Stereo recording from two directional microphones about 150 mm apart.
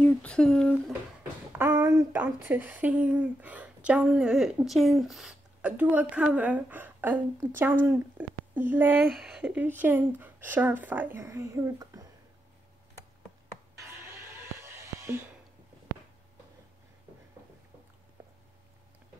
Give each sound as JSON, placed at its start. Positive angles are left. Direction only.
{"t": 0.0, "sound": "speech", "side_deg": 10}
{"t": 1.5, "sound": "speech", "side_deg": -15}
{"t": 9.0, "sound": "speech", "side_deg": 0}
{"t": 13.7, "sound": "music", "side_deg": -15}